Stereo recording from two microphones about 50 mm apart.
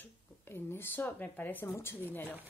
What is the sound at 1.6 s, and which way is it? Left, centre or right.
Speech, left.